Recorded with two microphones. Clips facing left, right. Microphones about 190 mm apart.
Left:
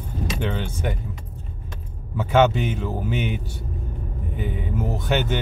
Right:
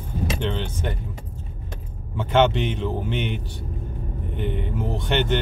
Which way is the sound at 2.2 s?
5° left (ahead or behind).